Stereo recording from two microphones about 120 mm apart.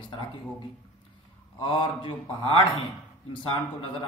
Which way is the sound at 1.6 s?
45° left (ahead or behind).